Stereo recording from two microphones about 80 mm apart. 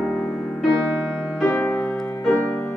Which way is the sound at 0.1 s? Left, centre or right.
Centre.